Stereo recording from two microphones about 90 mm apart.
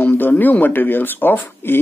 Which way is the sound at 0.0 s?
20° left (ahead or behind).